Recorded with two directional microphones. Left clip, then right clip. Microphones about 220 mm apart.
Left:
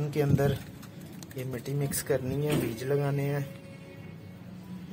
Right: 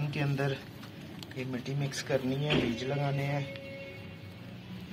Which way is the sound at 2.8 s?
30° left (ahead or behind).